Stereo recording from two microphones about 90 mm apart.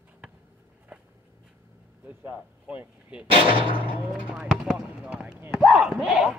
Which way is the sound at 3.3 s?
75° right (ahead or behind).